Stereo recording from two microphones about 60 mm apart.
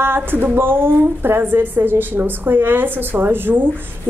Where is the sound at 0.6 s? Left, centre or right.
Right.